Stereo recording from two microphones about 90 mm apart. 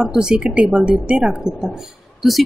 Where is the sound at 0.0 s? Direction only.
10° right (ahead or behind).